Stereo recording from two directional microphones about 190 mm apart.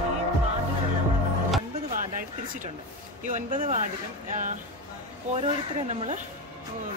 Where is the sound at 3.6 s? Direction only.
35° right (ahead or behind).